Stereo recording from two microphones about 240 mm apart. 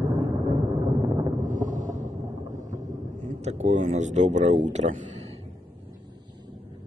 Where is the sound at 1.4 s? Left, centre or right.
Right.